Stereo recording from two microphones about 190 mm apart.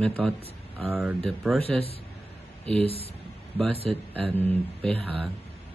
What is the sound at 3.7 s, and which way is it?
Speech, 30° right (ahead or behind).